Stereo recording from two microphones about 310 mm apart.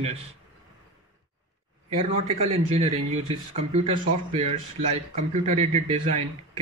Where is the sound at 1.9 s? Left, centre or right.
Centre.